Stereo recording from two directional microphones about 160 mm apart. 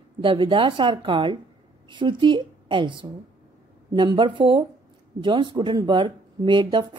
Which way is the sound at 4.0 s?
30° right (ahead or behind).